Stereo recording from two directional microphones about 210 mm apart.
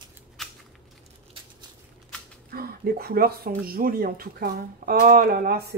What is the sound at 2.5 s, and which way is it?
Speech, 45° right (ahead or behind).